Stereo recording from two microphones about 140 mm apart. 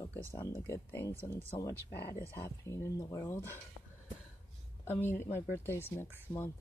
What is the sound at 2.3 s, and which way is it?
Speech, 20° left (ahead or behind).